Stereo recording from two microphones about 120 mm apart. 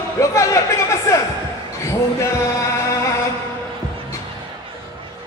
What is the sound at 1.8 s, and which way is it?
Speech, 25° left (ahead or behind).